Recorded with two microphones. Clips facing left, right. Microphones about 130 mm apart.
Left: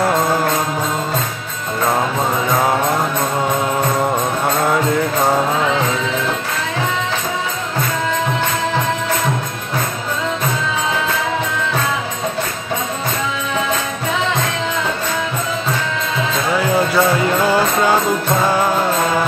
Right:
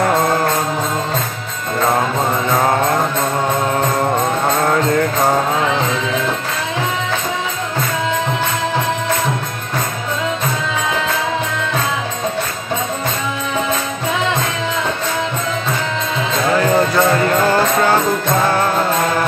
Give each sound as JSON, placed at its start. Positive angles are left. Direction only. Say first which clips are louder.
{"t": 16.5, "sound": "music", "louder": "right 1 dB", "side_deg": 10}